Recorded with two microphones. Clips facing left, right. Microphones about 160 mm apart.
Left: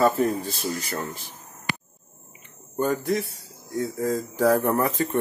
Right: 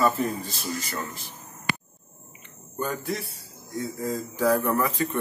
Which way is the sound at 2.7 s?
45° left (ahead or behind).